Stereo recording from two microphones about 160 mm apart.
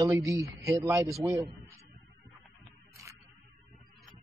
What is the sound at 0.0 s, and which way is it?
Speech, 20° right (ahead or behind).